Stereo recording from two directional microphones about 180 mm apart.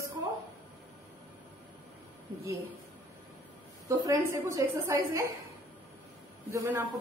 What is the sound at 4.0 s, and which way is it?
A woman's voice, 15° right (ahead or behind).